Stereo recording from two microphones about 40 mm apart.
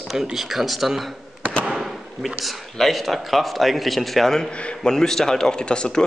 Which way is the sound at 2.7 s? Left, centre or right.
Centre.